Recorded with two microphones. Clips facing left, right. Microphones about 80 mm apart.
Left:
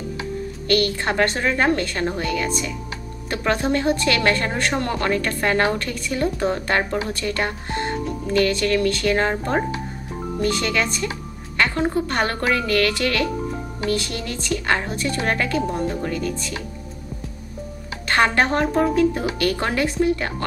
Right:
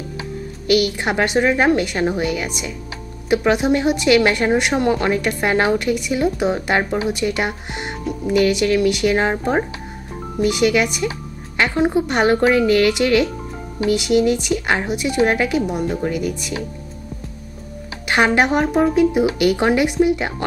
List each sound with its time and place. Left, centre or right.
0.7 s a woman's voice: centre
18.0 s speech: centre